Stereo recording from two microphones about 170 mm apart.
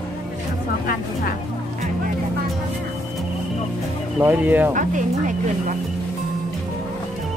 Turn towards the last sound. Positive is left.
turn(degrees=-50)  # may be behind; listen again after turning